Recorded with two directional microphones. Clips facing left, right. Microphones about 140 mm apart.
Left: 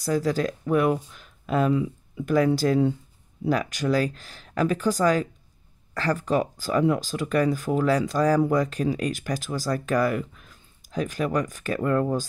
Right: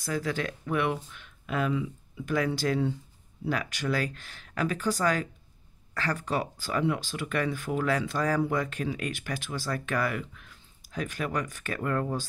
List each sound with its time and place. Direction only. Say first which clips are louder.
0.0 s speech: left 7 dB; 40° left (ahead or behind)